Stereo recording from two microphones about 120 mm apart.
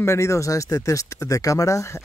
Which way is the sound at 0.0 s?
25° left (ahead or behind).